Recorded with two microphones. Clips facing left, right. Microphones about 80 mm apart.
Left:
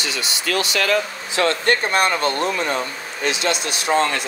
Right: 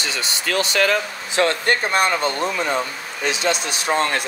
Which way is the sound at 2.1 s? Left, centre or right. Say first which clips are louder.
Left 1 dB; centre.